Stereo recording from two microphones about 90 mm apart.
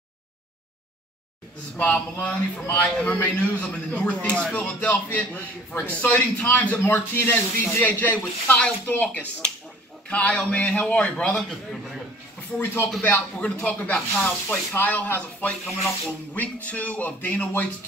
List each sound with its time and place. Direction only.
1.8 s a man's voice: 15° left (ahead or behind)
12.5 s speech: 30° left (ahead or behind)
13.0 s a man's voice: 15° left (ahead or behind)